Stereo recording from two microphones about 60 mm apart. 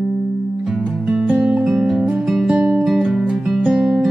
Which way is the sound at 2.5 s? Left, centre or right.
Right.